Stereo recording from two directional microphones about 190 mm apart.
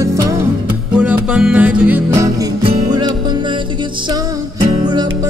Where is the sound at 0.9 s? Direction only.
5° right (ahead or behind); by 3.5 s 25° right (ahead or behind).